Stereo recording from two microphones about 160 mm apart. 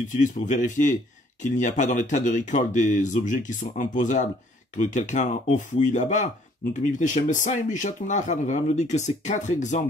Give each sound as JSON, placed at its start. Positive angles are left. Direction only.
{"t": 0.1, "sound": "speech", "side_deg": 50}